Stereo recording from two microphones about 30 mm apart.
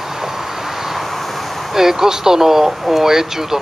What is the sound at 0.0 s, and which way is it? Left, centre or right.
Vehicle, centre.